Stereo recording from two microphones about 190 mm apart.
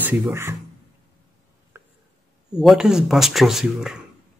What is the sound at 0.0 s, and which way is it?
Speech, 10° right (ahead or behind).